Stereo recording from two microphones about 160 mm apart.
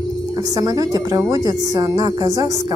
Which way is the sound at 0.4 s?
25° right (ahead or behind).